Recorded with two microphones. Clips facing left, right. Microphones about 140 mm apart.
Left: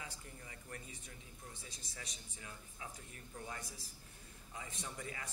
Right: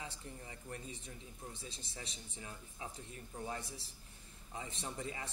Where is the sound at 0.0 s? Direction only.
30° right (ahead or behind).